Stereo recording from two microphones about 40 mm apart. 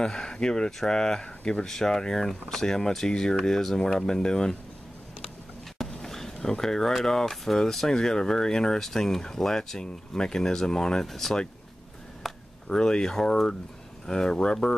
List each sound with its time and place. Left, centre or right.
0.0 s speech: centre
1.7 s speech: centre
5.9 s a sound: centre
7.1 s speech: centre
11.1 s speech: centre
12.2 s a sound: centre
12.6 s speech: centre